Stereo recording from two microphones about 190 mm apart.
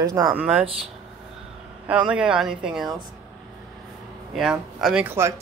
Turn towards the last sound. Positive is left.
turn(degrees=-10)  # may be behind; listen again after turning